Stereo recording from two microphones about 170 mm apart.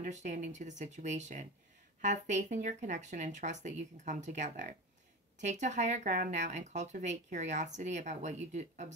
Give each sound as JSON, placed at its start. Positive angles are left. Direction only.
{"t": 0.0, "sound": "speech", "side_deg": -45}